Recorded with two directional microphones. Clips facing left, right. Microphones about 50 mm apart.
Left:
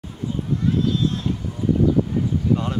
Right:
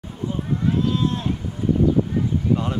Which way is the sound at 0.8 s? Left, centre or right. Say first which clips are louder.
Even; right.